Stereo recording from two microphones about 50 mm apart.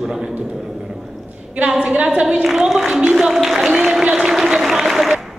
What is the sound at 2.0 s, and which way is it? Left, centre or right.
Speech, centre.